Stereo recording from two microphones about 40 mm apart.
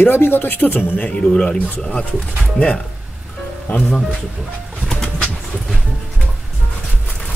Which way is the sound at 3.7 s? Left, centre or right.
Left.